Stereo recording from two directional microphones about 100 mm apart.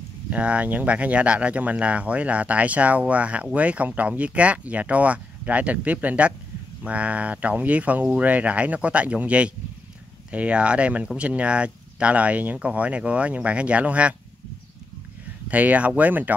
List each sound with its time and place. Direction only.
0.3 s speech: 15° right (ahead or behind)
15.5 s speech: 15° right (ahead or behind)